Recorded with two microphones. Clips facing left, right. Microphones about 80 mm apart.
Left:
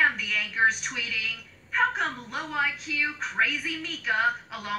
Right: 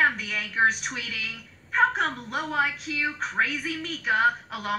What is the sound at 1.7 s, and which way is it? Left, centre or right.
Speech, centre.